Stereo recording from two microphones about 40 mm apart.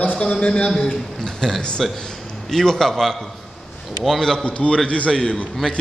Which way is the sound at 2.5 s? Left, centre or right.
Centre.